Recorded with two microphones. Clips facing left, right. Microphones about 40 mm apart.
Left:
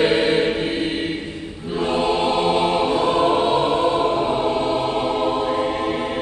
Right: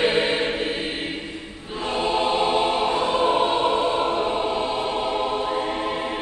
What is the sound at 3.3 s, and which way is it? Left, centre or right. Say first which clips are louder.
Choir: left 2 dB; centre.